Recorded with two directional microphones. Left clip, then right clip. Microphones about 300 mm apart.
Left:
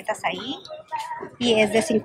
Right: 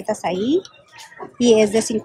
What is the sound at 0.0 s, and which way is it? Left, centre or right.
Speech, centre.